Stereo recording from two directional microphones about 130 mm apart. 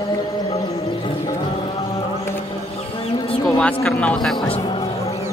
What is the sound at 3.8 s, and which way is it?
Speech, 5° left (ahead or behind).